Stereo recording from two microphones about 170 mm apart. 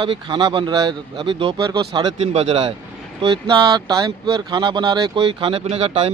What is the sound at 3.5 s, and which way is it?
Speech, 25° right (ahead or behind).